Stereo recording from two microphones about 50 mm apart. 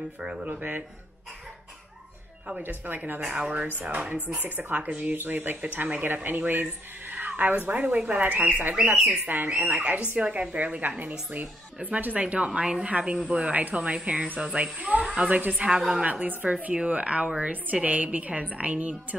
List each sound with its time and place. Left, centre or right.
0.2 s a woman's voice: right
0.5 s speech: right
2.6 s speech: right
3.3 s speech: centre
3.6 s speech: right
5.6 s speech: right
8.9 s speech: centre
9.2 s a woman's voice: right